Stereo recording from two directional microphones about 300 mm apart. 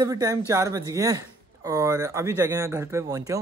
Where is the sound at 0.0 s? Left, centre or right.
Centre.